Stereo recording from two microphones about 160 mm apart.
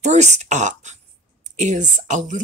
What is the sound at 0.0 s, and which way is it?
Speech, 45° right (ahead or behind).